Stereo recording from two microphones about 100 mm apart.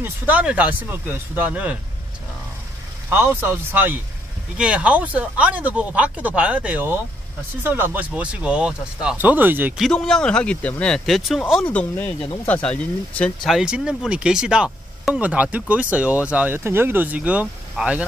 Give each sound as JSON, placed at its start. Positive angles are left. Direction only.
{"t": 0.0, "sound": "speech", "side_deg": -15}
{"t": 3.1, "sound": "speech", "side_deg": -20}
{"t": 9.8, "sound": "speech", "side_deg": 5}
{"t": 11.1, "sound": "speech", "side_deg": 0}
{"t": 11.7, "sound": "speech", "side_deg": 15}
{"t": 13.5, "sound": "speech", "side_deg": -5}